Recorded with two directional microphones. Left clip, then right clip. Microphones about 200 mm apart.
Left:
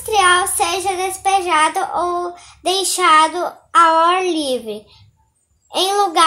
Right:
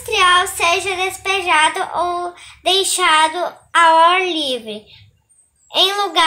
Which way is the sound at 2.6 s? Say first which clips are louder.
Right 1 dB; 60° left (ahead or behind).